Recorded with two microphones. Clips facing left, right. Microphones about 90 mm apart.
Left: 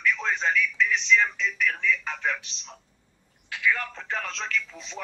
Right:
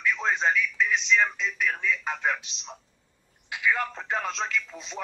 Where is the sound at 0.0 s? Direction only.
20° right (ahead or behind).